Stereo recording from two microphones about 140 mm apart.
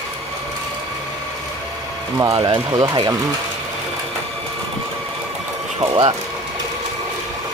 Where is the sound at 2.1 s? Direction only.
25° right (ahead or behind).